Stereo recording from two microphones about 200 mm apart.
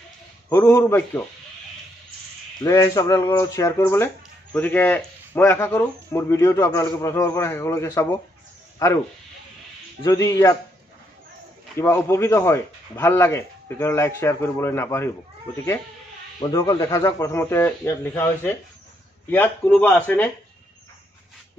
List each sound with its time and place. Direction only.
0.5 s speech: 15° left (ahead or behind)
2.6 s speech: 15° left (ahead or behind)
10.0 s speech: 15° left (ahead or behind)
11.8 s speech: 15° left (ahead or behind)